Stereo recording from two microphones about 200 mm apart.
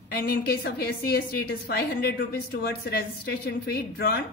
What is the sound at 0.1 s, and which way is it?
A woman's voice, 50° left (ahead or behind).